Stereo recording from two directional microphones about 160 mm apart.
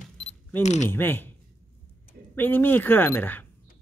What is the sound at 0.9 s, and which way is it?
Speech, 15° left (ahead or behind).